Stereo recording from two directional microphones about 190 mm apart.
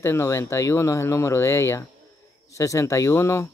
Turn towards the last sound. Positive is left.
turn(degrees=15)  # may be behind; listen again after turning